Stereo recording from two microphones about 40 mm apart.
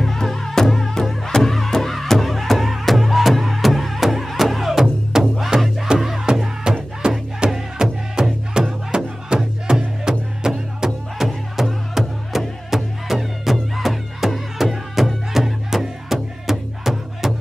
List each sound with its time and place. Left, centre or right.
0.0 s music: centre
6.7 s music: centre